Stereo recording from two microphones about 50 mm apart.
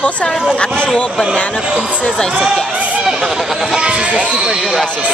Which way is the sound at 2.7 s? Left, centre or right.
Right.